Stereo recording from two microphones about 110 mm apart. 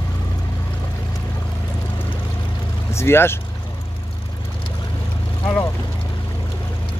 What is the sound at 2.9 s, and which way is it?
Speech, 20° left (ahead or behind).